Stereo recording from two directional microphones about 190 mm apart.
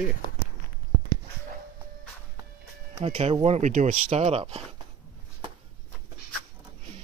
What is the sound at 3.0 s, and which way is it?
Speech, 35° right (ahead or behind).